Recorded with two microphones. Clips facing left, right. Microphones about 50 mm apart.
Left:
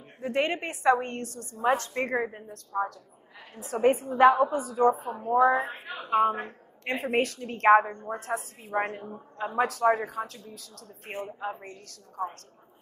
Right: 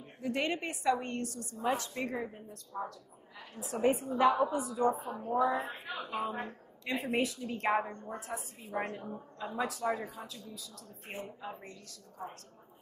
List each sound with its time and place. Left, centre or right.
0.2 s a woman's voice: left
5.4 s a woman's voice: left
5.7 s a woman's voice: left
6.0 s a woman's voice: left
7.8 s a woman's voice: left
8.2 s a woman's voice: left